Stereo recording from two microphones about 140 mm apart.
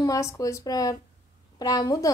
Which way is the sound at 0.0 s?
25° left (ahead or behind).